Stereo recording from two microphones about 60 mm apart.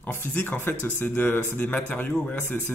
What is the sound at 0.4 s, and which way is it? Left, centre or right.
Speech, left.